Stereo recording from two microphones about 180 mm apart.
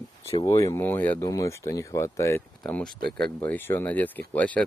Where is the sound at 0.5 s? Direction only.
15° left (ahead or behind).